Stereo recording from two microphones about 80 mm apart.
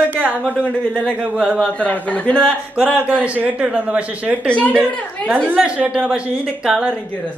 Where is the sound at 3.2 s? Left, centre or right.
Centre.